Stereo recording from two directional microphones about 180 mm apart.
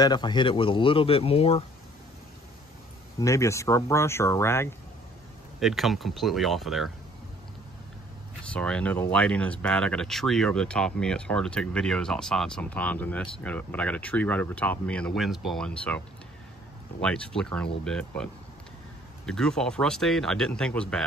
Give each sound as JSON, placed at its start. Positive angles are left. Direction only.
{"t": 0.0, "sound": "speech", "side_deg": 25}
{"t": 3.2, "sound": "speech", "side_deg": 15}
{"t": 5.6, "sound": "speech", "side_deg": 0}
{"t": 8.5, "sound": "speech", "side_deg": 5}
{"t": 17.0, "sound": "speech", "side_deg": 5}